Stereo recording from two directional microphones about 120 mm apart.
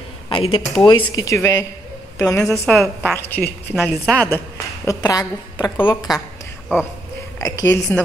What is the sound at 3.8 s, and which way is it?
Speech, 10° left (ahead or behind).